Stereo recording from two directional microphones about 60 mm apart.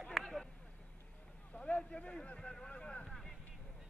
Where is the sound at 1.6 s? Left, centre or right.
Centre.